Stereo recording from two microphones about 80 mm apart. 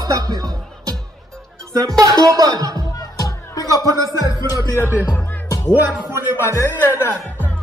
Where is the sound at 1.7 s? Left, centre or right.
Right.